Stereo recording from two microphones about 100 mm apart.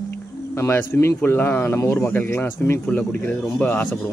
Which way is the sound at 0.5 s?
25° left (ahead or behind).